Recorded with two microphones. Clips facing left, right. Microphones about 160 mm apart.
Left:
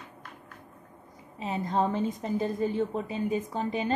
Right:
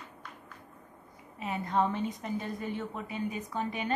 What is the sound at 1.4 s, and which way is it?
A woman's voice, 30° left (ahead or behind).